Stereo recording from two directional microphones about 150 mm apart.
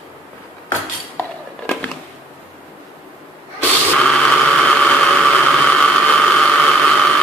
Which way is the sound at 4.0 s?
5° left (ahead or behind).